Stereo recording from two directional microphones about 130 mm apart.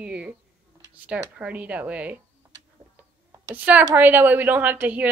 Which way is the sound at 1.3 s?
10° right (ahead or behind).